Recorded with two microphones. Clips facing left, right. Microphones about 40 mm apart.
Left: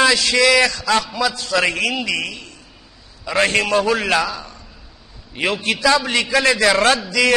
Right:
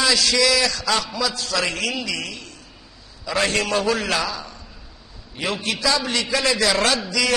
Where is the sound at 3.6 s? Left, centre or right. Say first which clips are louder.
Left 4 dB; centre.